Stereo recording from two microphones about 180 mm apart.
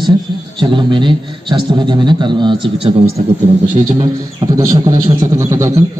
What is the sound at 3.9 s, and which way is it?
A man's voice, 20° right (ahead or behind).